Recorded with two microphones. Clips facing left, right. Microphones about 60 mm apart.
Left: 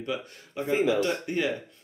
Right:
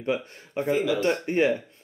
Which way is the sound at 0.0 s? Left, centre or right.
Right.